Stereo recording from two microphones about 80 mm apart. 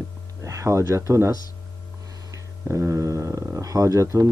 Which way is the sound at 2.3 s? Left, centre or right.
Right.